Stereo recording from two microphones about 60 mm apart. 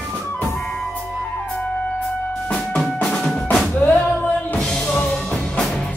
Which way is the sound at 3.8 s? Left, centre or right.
Left.